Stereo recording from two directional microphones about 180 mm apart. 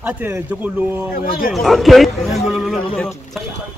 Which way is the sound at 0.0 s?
10° right (ahead or behind).